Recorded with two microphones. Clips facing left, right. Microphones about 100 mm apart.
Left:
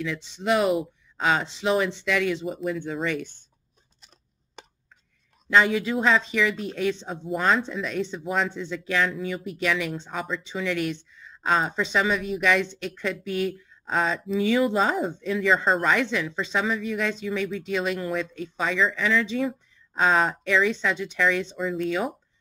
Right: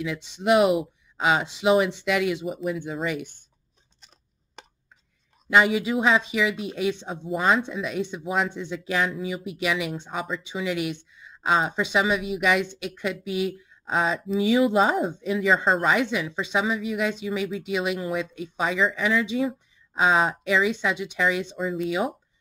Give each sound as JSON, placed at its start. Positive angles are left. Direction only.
{"t": 0.0, "sound": "speech", "side_deg": -15}
{"t": 2.4, "sound": "speech", "side_deg": -5}
{"t": 5.5, "sound": "speech", "side_deg": -15}
{"t": 8.2, "sound": "speech", "side_deg": -5}
{"t": 8.5, "sound": "speech", "side_deg": -15}
{"t": 15.9, "sound": "speech", "side_deg": -15}